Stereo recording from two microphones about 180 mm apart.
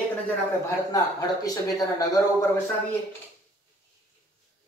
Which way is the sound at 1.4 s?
20° left (ahead or behind).